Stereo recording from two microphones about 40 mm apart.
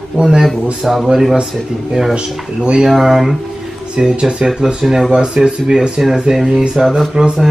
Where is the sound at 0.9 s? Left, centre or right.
Centre.